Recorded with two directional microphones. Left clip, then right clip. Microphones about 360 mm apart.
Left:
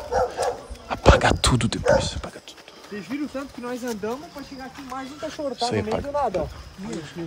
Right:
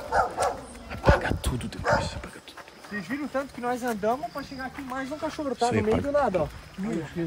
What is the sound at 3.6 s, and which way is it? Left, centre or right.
Speech, centre.